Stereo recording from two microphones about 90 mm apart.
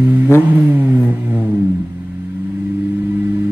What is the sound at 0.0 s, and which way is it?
Vehicle, 20° right (ahead or behind).